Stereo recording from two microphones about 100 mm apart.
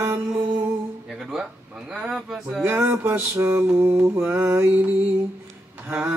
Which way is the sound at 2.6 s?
20° right (ahead or behind).